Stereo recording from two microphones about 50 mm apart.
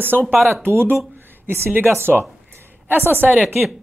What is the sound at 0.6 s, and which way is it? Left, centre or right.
A woman's voice, right.